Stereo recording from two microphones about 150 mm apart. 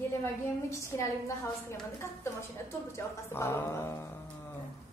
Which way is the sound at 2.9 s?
15° left (ahead or behind).